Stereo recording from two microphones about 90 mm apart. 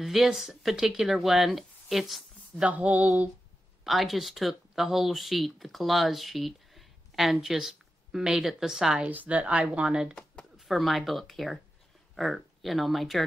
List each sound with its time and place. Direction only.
0.0 s speech: 5° right (ahead or behind)
2.6 s a sound: 15° right (ahead or behind)
3.8 s speech: centre (ahead or behind)
10.6 s speech: centre (ahead or behind)